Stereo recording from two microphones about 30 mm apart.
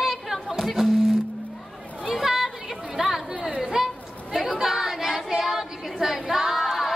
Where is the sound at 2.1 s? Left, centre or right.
Centre.